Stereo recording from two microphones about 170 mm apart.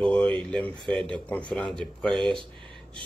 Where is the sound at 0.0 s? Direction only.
5° left (ahead or behind).